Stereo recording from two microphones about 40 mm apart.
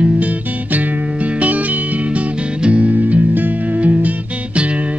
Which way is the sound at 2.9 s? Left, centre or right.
Right.